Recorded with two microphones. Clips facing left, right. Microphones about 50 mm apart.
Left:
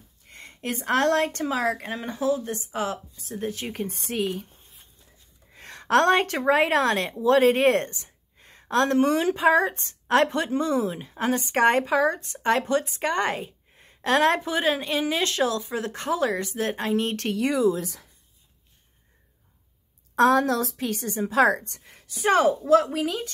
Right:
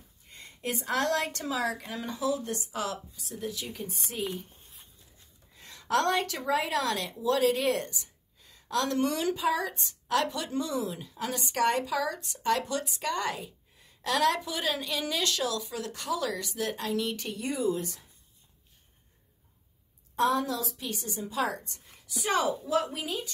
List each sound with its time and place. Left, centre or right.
0.3 s a woman's voice: left
5.5 s a woman's voice: left
17.1 s speech: left
20.2 s a woman's voice: left
22.7 s a woman's voice: left